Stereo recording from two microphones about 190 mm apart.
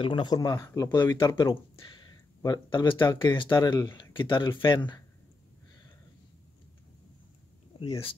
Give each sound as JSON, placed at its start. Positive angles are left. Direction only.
{"t": 0.0, "sound": "speech", "side_deg": 25}